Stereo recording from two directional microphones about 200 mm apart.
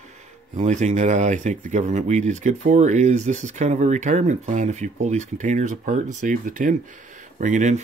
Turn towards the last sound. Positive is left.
turn(degrees=-35)  # may be behind; listen again after turning